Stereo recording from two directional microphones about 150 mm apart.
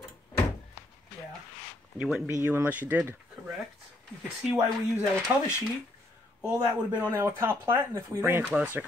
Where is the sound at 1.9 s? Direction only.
5° right (ahead or behind).